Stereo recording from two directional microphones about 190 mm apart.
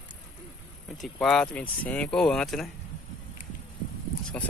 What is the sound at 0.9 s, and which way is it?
Speech, 5° left (ahead or behind).